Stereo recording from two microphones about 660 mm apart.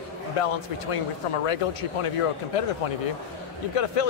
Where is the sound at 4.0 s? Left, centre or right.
Left.